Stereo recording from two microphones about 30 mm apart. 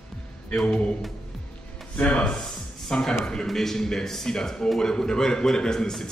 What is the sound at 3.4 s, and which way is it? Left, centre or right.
A man's voice, centre.